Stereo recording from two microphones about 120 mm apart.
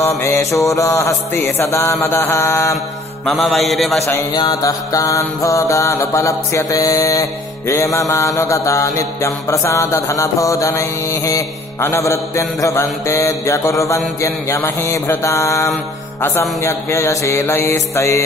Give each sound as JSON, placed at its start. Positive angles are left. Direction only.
{"t": 0.2, "sound": "mantra", "side_deg": 25}
{"t": 3.3, "sound": "mantra", "side_deg": 0}
{"t": 4.0, "sound": "mantra", "side_deg": 25}